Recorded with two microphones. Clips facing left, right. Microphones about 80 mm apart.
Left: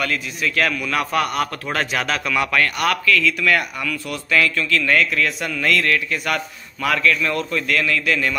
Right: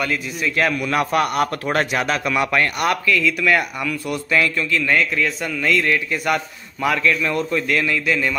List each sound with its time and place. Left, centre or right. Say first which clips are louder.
0.6 s a man's voice: right 2 dB; right
2.2 s speech: right 1 dB; right